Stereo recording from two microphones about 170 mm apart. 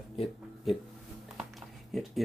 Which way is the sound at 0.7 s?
Centre (ahead or behind).